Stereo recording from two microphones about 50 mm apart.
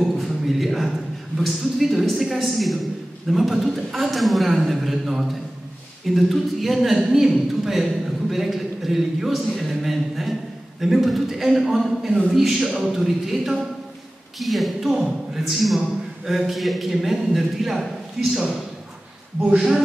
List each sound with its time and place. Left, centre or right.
0.0 s a sound: centre
1.4 s speech: centre
19.4 s speech: right